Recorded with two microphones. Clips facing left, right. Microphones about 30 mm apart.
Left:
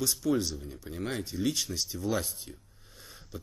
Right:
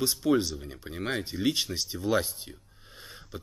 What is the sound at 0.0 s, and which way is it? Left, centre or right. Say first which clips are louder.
Speech: right 3 dB; right.